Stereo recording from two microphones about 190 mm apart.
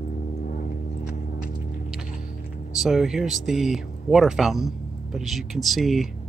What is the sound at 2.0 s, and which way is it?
Hum, 45° left (ahead or behind).